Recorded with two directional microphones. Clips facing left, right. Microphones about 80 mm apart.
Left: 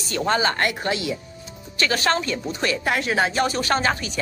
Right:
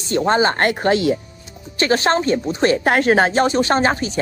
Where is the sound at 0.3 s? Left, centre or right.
Right.